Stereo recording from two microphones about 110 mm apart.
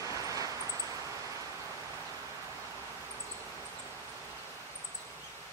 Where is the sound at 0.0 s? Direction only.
30° right (ahead or behind).